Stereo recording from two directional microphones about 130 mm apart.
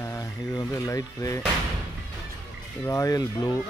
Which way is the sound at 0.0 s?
25° left (ahead or behind).